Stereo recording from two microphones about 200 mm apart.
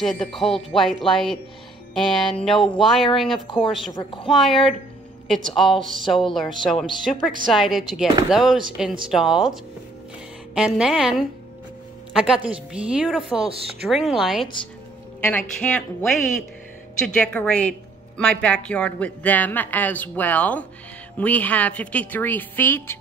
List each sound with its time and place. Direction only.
0.0 s speech: centre (ahead or behind)
3.4 s a woman's voice: 25° left (ahead or behind)
4.3 s speech: centre (ahead or behind)
5.6 s a woman's voice: centre (ahead or behind)